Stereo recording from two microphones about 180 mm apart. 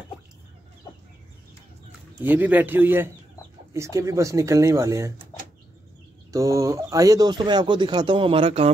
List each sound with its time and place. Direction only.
2.2 s speech: 10° right (ahead or behind)
6.3 s speech: 20° right (ahead or behind)